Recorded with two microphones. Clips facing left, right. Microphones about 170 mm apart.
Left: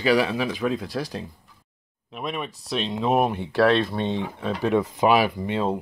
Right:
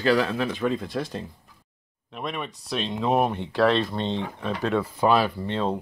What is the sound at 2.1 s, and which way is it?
Speech, 5° left (ahead or behind).